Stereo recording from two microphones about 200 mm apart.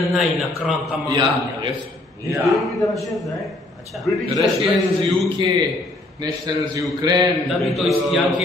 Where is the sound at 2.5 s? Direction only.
Centre (ahead or behind).